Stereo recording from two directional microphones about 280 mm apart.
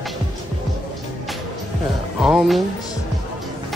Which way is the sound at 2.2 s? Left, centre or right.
Centre.